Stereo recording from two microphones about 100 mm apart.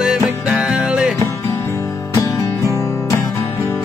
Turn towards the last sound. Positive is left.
turn(degrees=30)  # may be behind; listen again after turning